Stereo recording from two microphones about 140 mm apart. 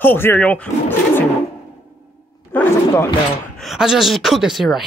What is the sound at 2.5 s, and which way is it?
Speech, 15° left (ahead or behind).